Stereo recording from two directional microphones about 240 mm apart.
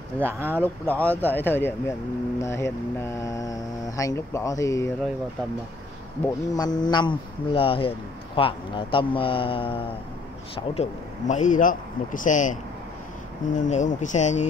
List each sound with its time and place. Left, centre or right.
0.2 s speech: centre
0.8 s speech: centre
6.2 s a man's voice: centre